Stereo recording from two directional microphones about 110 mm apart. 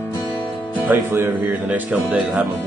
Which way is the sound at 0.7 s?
20° right (ahead or behind).